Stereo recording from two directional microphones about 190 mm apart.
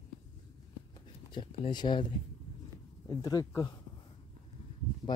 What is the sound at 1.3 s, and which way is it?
Speech, 25° left (ahead or behind).